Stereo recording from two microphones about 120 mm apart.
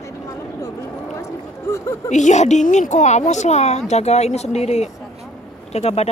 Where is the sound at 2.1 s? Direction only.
85° left.